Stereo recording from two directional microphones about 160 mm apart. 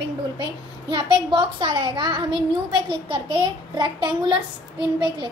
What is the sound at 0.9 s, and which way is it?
A child's voice, 30° right (ahead or behind).